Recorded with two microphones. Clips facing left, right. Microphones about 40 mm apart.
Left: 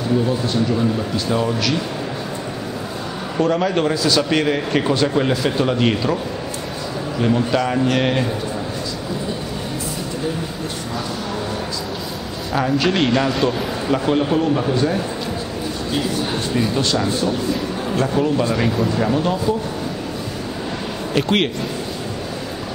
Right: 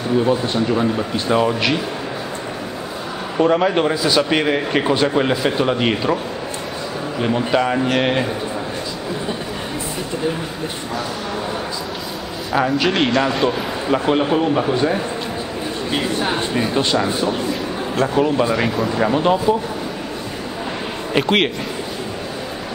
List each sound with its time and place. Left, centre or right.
0.3 s a man's voice: right
3.3 s a man's voice: centre
7.2 s a man's voice: centre
12.5 s a man's voice: centre
15.9 s a man's voice: right
18.5 s speech: centre
18.9 s a man's voice: centre
21.1 s a man's voice: centre